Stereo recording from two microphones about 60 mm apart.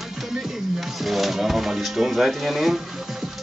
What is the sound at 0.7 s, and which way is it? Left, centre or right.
Speech, centre.